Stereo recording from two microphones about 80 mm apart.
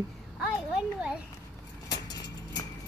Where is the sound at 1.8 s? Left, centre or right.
Left.